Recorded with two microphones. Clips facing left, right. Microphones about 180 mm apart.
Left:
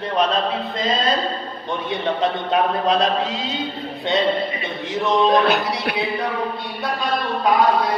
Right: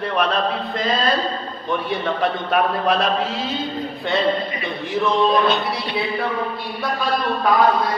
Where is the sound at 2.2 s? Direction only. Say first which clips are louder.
Even; 20° left (ahead or behind).